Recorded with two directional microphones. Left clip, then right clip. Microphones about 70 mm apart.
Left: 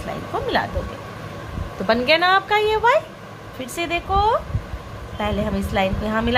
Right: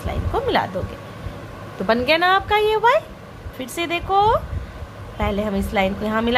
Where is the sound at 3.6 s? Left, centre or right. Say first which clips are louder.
Even; right.